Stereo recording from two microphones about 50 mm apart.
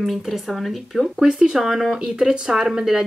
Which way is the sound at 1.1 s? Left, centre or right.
Centre.